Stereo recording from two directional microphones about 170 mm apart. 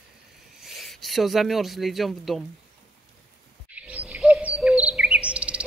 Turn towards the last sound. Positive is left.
turn(degrees=-5)  # may be behind; listen again after turning